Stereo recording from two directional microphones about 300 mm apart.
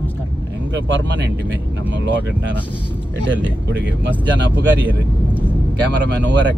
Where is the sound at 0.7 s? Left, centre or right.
Right.